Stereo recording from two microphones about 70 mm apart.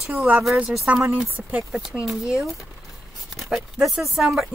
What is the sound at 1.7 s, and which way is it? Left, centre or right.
Speech, centre.